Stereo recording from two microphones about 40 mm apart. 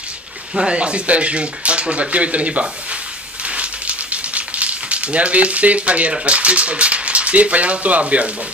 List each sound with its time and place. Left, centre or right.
0.7 s speech: right
3.4 s a sound: right
6.1 s speech: right